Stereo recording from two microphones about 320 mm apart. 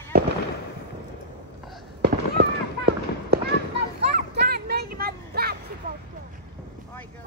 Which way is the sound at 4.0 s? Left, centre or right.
Right.